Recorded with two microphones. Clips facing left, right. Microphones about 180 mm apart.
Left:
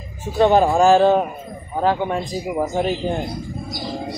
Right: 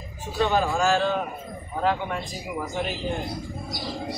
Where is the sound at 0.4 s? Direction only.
50° left (ahead or behind).